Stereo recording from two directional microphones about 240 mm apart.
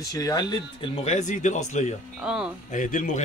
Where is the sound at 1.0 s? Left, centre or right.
Left.